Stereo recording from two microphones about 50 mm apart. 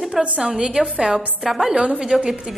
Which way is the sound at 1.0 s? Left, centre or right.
Centre.